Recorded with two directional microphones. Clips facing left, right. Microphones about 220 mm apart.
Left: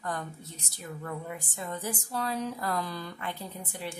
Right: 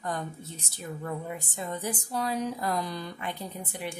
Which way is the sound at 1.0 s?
25° right (ahead or behind).